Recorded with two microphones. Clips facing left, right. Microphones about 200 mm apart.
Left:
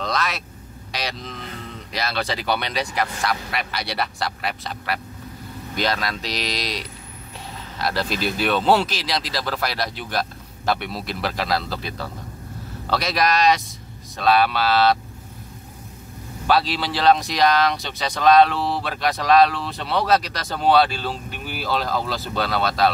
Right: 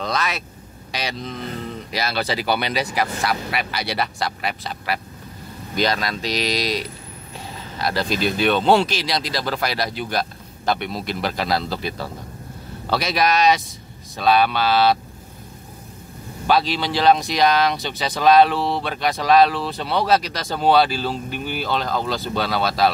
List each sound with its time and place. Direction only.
0.0 s vehicle: centre (ahead or behind)
0.9 s speech: centre (ahead or behind)
16.4 s speech: centre (ahead or behind)